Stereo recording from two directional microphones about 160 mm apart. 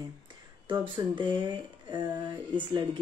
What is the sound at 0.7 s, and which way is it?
Speech, 30° right (ahead or behind).